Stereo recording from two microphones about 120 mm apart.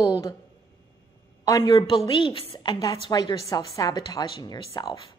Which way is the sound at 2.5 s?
35° left (ahead or behind).